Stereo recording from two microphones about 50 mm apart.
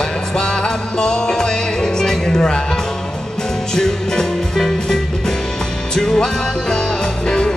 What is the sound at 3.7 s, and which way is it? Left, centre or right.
Music, centre.